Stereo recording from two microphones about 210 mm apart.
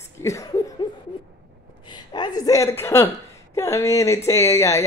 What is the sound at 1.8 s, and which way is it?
A woman's voice, 20° left (ahead or behind).